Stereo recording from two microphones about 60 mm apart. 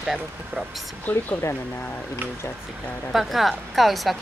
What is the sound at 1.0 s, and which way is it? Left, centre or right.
Speech, left.